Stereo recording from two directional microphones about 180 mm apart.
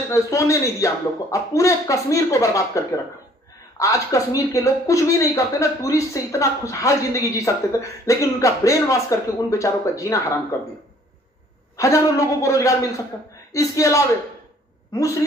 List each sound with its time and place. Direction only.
0.1 s speech: 15° left (ahead or behind)
11.7 s speech: 15° left (ahead or behind)